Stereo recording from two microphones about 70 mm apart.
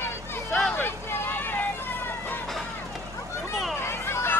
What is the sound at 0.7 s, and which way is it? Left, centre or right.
Vehicle, left.